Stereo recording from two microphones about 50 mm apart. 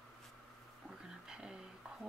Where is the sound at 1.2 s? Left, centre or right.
Centre.